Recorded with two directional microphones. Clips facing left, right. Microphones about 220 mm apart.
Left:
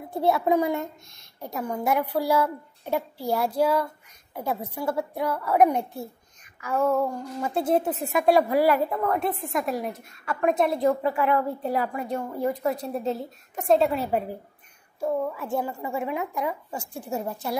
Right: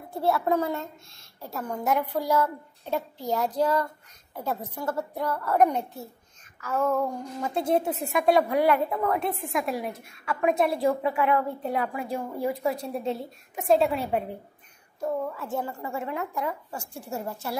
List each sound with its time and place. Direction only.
0.1 s a woman's voice: 20° left (ahead or behind)